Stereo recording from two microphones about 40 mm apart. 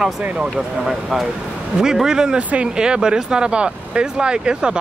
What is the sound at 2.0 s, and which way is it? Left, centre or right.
Speech, centre.